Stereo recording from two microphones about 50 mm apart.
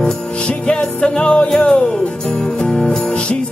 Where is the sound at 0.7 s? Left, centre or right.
Left.